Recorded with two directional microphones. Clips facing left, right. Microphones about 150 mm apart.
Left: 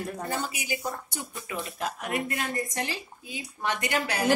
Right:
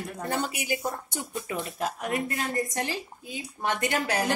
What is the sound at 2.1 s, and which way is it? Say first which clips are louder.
Speech: even; 40° right (ahead or behind).